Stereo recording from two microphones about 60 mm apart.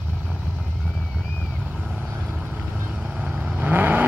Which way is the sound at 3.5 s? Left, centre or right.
Right.